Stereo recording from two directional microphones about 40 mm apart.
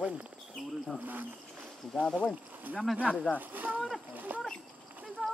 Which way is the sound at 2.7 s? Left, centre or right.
Right.